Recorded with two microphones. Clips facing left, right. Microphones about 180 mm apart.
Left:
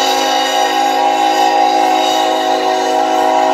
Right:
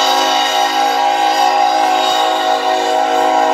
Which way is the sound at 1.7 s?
5° left (ahead or behind).